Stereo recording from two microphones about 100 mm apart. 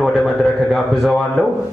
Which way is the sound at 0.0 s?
Centre (ahead or behind).